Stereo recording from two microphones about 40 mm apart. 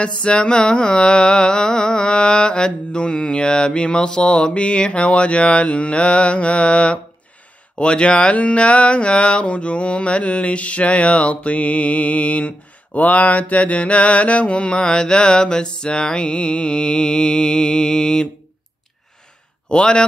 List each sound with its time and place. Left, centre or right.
0.0 s mantra: left
19.7 s mantra: left